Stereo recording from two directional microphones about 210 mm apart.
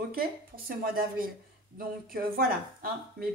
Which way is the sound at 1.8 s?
45° right (ahead or behind).